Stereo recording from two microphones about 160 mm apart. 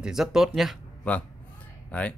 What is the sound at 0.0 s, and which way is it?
A man's voice, 5° right (ahead or behind).